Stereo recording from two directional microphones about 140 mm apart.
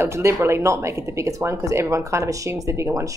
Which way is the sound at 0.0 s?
20° right (ahead or behind).